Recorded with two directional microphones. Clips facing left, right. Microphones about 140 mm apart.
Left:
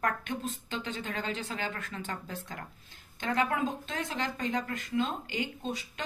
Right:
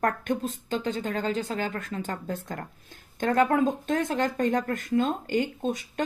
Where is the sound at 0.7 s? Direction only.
40° right (ahead or behind).